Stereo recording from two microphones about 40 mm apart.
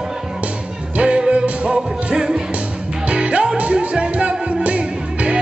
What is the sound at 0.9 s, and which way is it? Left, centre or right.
Music, right.